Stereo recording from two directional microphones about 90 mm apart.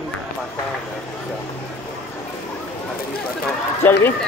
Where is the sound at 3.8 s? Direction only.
25° left (ahead or behind).